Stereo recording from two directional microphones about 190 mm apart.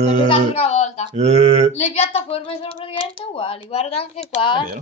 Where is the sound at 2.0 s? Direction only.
30° left (ahead or behind).